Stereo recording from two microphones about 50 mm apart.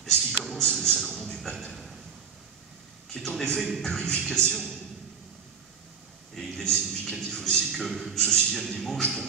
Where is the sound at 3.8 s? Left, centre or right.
Centre.